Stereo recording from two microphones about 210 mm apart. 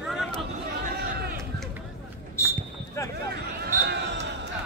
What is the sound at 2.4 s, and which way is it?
Basketball bounce, 15° left (ahead or behind).